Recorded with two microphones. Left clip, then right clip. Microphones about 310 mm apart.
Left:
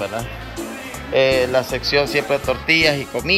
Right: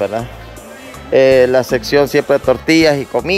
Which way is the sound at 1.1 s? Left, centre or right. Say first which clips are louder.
Right 7 dB; right.